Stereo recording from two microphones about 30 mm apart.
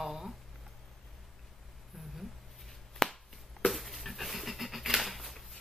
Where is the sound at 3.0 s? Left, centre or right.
Centre.